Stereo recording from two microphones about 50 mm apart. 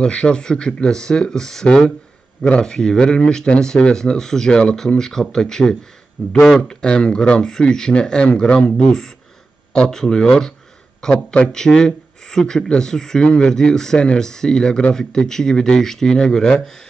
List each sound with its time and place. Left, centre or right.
0.0 s speech: left
9.8 s a man's voice: centre